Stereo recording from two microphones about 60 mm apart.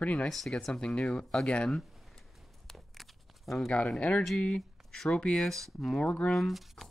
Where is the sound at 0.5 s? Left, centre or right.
Centre.